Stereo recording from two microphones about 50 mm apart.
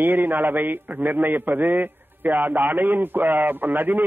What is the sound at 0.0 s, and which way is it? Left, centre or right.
A man's voice, right.